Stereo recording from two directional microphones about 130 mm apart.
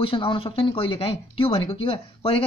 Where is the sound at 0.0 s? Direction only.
40° left (ahead or behind).